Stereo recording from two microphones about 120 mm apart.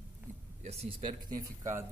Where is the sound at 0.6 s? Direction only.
60° right (ahead or behind).